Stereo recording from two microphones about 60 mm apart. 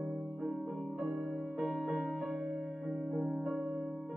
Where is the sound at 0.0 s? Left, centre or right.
Centre.